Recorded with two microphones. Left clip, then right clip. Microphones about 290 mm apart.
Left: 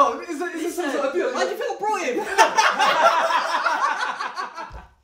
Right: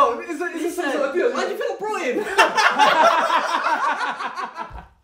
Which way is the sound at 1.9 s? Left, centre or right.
Centre.